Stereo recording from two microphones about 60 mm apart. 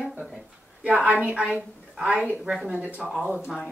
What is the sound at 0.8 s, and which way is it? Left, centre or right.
Speech, right.